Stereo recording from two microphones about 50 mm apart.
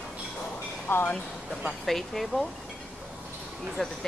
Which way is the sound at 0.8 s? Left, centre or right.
Left.